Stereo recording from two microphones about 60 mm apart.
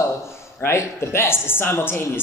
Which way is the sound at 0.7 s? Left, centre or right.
Left.